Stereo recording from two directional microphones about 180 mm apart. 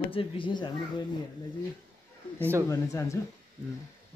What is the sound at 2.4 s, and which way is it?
Speech, 15° right (ahead or behind).